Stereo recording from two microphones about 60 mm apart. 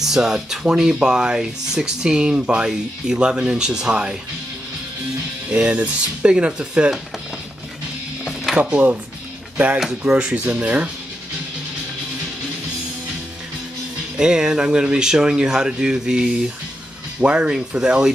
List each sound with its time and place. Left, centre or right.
0.0 s speech: centre
5.5 s speech: centre
8.5 s speech: right
9.8 s speech: centre
10.1 s speech: centre
14.1 s speech: centre